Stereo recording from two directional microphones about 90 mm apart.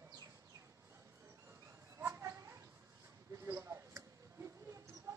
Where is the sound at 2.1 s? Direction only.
30° right (ahead or behind).